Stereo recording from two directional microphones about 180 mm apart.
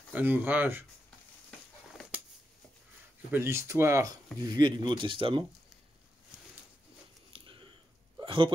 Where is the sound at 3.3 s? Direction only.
15° right (ahead or behind).